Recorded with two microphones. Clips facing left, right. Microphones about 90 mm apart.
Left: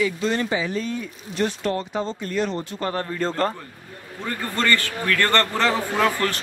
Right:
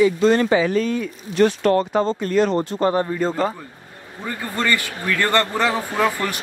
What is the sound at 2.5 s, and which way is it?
Speech, 40° right (ahead or behind).